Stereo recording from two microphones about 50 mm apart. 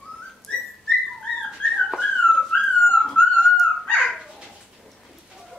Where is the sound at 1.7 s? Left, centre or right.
Centre.